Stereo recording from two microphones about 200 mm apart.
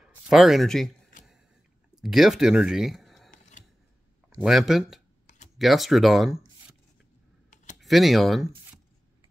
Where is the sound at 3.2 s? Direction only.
40° left (ahead or behind).